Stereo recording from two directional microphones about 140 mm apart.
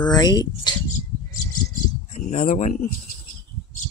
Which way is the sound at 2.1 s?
55° left (ahead or behind).